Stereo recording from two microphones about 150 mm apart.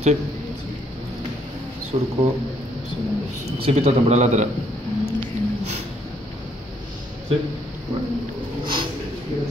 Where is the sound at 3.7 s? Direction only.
45° right (ahead or behind).